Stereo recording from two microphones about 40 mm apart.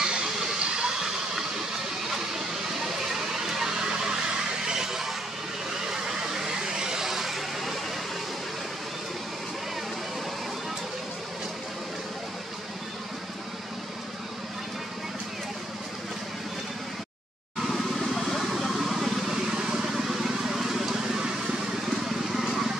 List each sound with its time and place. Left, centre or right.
0.0 s a sound: right; by 7.8 s centre
17.6 s vehicle: centre
22.0 s vehicle: centre